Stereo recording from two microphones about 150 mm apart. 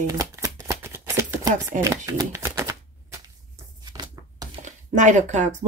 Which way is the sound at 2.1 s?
20° right (ahead or behind).